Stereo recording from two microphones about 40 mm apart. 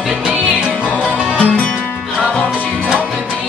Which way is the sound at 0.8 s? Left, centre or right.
Right.